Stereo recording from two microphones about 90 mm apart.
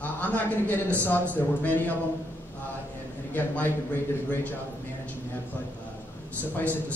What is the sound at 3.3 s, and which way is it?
Speech, 20° left (ahead or behind).